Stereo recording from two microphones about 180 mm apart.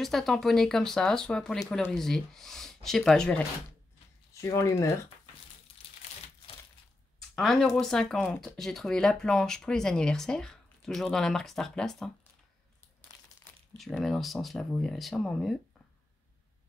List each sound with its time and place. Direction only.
0.0 s speech: centre (ahead or behind)
4.3 s speech: 15° left (ahead or behind)
7.2 s speech: centre (ahead or behind)
13.7 s speech: centre (ahead or behind)